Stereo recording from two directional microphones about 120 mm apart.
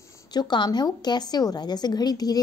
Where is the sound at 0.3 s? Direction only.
35° left (ahead or behind).